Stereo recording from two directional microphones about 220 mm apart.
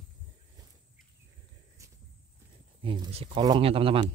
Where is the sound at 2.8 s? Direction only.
20° right (ahead or behind).